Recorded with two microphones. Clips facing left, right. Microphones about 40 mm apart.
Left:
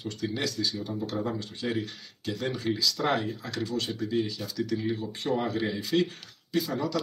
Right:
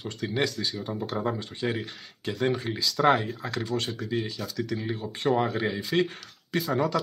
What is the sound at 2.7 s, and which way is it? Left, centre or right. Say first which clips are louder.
Speech: right 8 dB; right.